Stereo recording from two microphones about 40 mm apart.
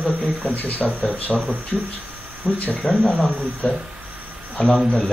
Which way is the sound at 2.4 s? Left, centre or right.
Right.